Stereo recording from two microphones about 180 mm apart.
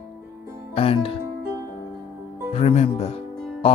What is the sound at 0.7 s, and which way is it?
Speech, 30° left (ahead or behind).